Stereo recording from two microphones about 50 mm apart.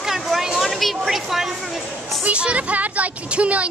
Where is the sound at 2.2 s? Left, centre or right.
Right.